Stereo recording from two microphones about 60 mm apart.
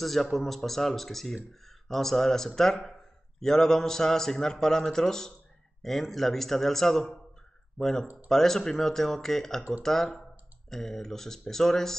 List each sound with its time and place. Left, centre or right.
0.0 s a man's voice: centre
9.6 s speech: right
9.8 s a man's voice: centre